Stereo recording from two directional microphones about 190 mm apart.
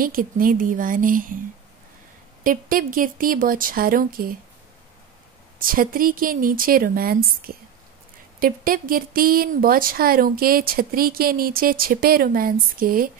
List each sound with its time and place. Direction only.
0.0 s speech: 45° right (ahead or behind)
2.4 s speech: 45° right (ahead or behind)
5.6 s speech: 50° right (ahead or behind)